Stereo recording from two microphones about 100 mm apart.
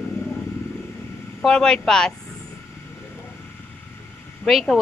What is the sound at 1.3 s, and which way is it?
Speech, 5° left (ahead or behind).